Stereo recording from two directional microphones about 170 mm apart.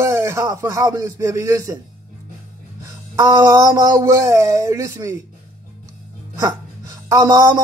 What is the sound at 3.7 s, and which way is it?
Speech, 20° right (ahead or behind).